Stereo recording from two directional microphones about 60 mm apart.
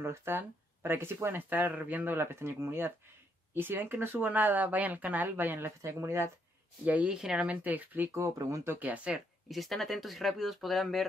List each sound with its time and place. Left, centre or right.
0.0 s speech: right
2.1 s speech: right
5.8 s speech: right
7.1 s speech: centre
7.6 s speech: right
8.4 s speech: right
8.7 s speech: right
9.1 s speech: centre